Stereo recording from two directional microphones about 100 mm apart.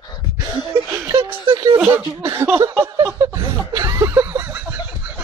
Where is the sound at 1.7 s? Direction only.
25° right (ahead or behind).